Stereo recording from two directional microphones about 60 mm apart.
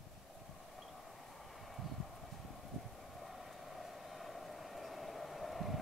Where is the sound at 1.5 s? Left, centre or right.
Centre.